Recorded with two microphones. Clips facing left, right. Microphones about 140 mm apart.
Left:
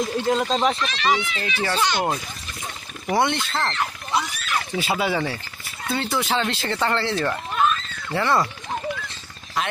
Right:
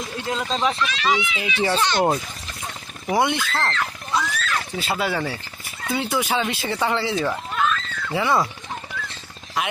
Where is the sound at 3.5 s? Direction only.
15° left (ahead or behind).